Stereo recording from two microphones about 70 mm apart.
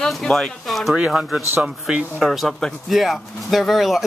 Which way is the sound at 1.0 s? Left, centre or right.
Centre.